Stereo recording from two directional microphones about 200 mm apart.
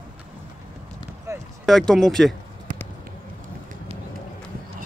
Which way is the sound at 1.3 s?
15° right (ahead or behind).